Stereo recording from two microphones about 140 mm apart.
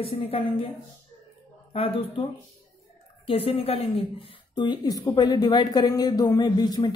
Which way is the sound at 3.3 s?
40° left (ahead or behind).